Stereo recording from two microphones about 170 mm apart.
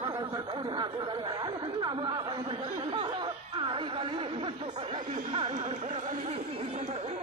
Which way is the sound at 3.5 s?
30° right (ahead or behind).